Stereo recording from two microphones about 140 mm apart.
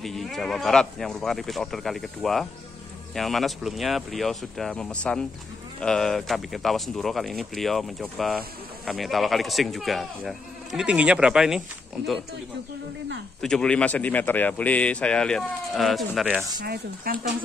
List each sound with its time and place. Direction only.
0.0 s speech: centre (ahead or behind)
13.4 s speech: 5° left (ahead or behind)
16.6 s speech: 90° right